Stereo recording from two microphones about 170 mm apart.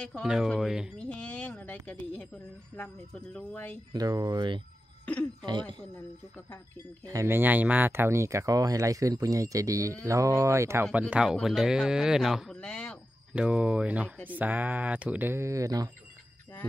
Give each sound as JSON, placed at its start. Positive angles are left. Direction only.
{"t": 0.1, "sound": "speech", "side_deg": 0}
{"t": 3.3, "sound": "speech", "side_deg": 10}
{"t": 3.9, "sound": "speech", "side_deg": -20}
{"t": 7.1, "sound": "speech", "side_deg": -15}
{"t": 13.3, "sound": "speech", "side_deg": -5}